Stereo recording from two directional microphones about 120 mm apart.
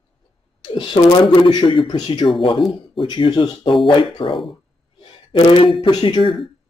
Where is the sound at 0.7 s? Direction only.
40° left (ahead or behind).